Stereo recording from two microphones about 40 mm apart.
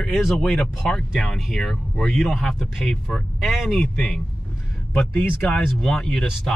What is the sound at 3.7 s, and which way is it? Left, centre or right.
Speech, centre.